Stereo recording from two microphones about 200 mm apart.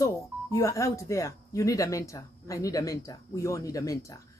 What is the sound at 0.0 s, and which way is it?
Speech, 15° left (ahead or behind).